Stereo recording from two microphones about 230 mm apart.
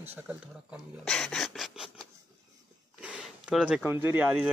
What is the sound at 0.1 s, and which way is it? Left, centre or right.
Speech, centre.